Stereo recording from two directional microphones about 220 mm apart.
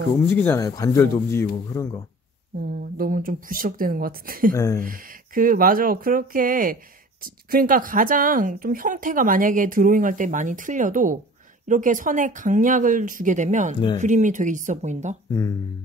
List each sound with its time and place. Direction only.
0.3 s speech: 10° left (ahead or behind)
2.6 s speech: 40° right (ahead or behind)
4.6 s speech: 15° left (ahead or behind)
4.8 s speech: 40° right (ahead or behind)